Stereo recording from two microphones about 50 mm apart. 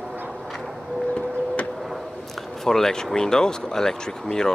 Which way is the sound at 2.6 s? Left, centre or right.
Centre.